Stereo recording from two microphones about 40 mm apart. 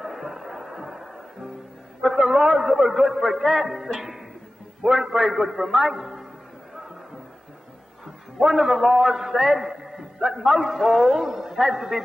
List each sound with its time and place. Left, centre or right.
0.0 s a sound: centre
2.0 s a man's voice: centre
8.4 s a man's voice: centre